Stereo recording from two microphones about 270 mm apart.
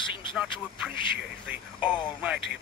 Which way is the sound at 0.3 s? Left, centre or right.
Centre.